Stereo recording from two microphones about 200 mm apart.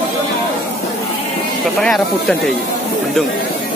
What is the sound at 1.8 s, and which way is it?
Speech, centre (ahead or behind).